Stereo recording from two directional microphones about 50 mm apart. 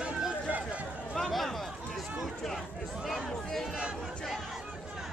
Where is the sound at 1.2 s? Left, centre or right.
Centre.